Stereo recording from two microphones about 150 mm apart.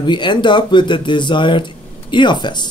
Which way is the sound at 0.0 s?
30° left (ahead or behind).